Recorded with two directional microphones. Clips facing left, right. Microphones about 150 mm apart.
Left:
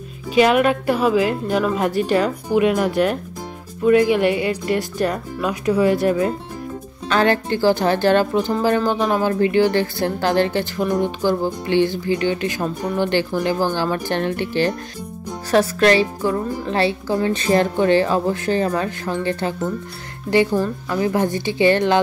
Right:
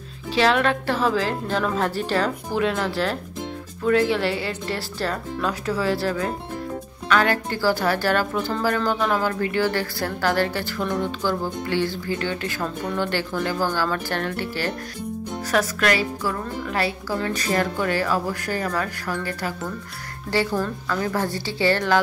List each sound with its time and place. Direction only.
0.3 s a woman's voice: 15° left (ahead or behind)
7.1 s a woman's voice: 30° left (ahead or behind)